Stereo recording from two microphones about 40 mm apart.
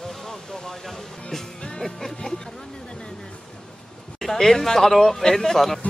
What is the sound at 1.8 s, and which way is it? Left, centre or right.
Music, centre.